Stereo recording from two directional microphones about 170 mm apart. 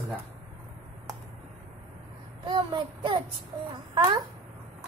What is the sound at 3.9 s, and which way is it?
Speech, 25° right (ahead or behind).